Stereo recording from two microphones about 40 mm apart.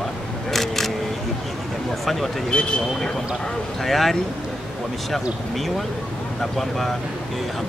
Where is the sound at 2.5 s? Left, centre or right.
Left.